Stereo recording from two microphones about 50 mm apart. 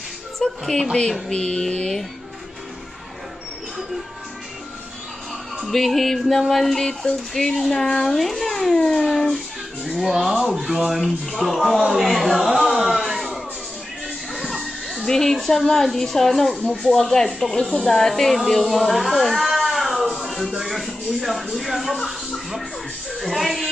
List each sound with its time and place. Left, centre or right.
0.4 s speech: centre
1.3 s speech: centre
5.6 s a woman's voice: centre
9.9 s a woman's voice: centre
11.9 s a sound: centre
14.0 s music: centre
15.0 s a woman's voice: centre
16.6 s speech: left
16.9 s speech: centre
20.2 s music: centre
21.9 s speech: centre